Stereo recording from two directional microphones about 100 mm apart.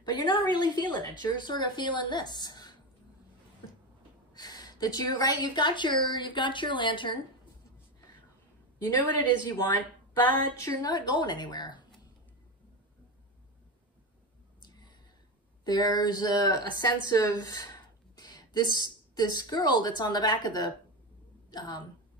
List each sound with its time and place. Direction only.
0.0 s a woman's voice: 50° left (ahead or behind)
4.3 s a woman's voice: 40° left (ahead or behind)
9.6 s speech: 20° left (ahead or behind)
10.6 s a woman's voice: 40° left (ahead or behind)
14.6 s a sound: 45° left (ahead or behind)
15.6 s a woman's voice: 45° left (ahead or behind)